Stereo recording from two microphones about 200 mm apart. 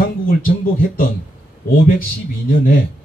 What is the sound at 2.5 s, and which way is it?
Speech, 45° left (ahead or behind).